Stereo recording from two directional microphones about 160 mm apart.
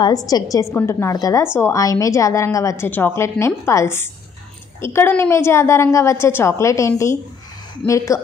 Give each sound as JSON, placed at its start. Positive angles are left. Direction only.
{"t": 0.0, "sound": "a woman's voice", "side_deg": 25}